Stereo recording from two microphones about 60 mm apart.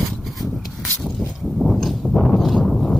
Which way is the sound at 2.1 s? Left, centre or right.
Centre.